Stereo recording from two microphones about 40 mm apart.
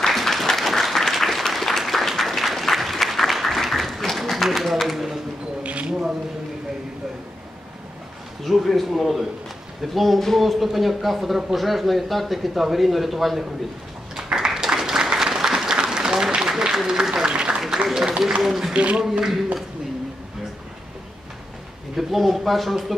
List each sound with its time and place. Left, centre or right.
0.1 s applause: centre
5.6 s a sound: right
5.9 s speech: centre
8.5 s speech: centre
14.1 s applause: centre
16.4 s speech: centre
18.7 s speech: right
21.9 s speech: centre